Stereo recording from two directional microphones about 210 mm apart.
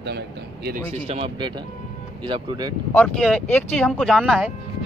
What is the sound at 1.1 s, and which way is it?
Speech, 25° right (ahead or behind).